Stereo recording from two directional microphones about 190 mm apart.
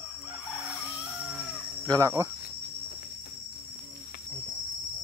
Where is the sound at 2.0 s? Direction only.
15° right (ahead or behind).